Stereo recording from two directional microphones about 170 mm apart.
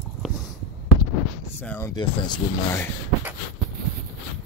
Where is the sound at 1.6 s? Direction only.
10° left (ahead or behind).